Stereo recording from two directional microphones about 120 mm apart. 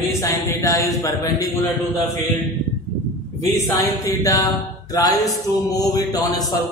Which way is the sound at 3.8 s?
30° left (ahead or behind).